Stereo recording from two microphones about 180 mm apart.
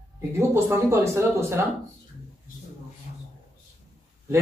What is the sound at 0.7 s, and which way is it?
Speech, 15° right (ahead or behind).